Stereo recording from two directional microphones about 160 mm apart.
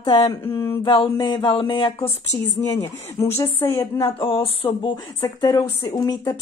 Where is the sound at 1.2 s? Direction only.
30° left (ahead or behind).